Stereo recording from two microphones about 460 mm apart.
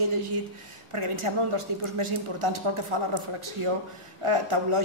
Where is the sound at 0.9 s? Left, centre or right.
Right.